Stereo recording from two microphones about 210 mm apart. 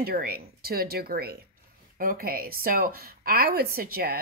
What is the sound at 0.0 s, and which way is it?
Speech, 45° right (ahead or behind).